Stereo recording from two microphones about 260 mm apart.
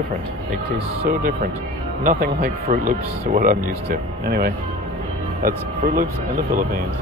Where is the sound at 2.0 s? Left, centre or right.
Right.